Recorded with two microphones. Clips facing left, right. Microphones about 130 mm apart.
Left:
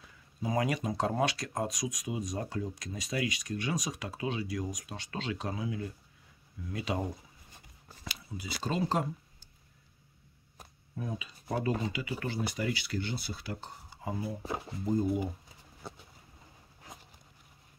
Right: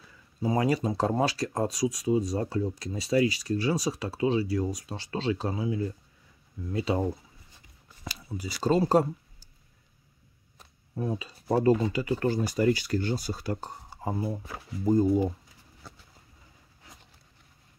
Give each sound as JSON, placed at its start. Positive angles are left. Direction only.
{"t": 0.4, "sound": "speech", "side_deg": -35}
{"t": 11.0, "sound": "speech", "side_deg": -35}
{"t": 15.8, "sound": "pigeon", "side_deg": 25}